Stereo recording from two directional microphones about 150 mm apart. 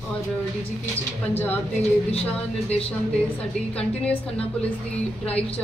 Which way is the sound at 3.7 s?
10° left (ahead or behind).